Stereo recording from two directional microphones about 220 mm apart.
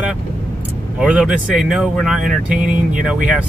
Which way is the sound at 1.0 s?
5° right (ahead or behind).